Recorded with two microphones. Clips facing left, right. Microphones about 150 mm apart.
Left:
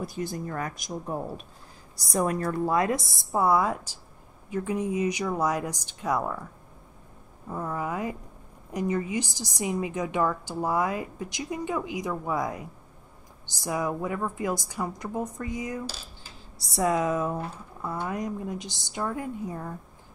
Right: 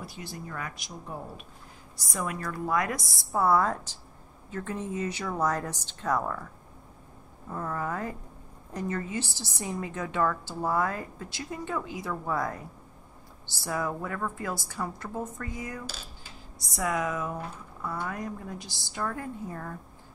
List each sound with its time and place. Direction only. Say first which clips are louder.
0.0 s a woman's voice: left 8 dB; 45° left (ahead or behind); by 6.4 s 10° left (ahead or behind)
7.4 s a woman's voice: left 2 dB; 10° left (ahead or behind)
16.5 s speech: left 5 dB; 30° left (ahead or behind); by 19.7 s 15° left (ahead or behind)